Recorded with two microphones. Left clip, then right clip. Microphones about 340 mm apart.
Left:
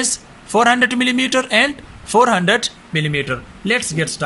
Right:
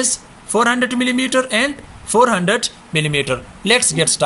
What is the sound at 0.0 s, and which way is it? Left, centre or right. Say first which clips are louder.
Speech: right 1 dB; centre.